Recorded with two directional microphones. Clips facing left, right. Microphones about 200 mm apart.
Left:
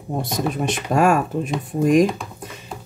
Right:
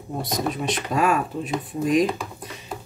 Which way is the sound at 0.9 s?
45° left (ahead or behind).